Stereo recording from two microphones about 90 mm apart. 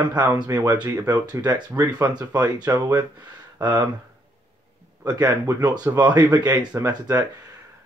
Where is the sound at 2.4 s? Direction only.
45° right (ahead or behind).